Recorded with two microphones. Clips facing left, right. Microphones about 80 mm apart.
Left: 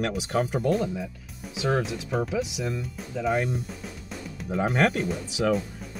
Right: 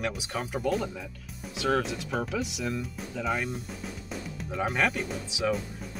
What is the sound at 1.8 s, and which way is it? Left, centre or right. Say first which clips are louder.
Speech: left 3 dB; centre.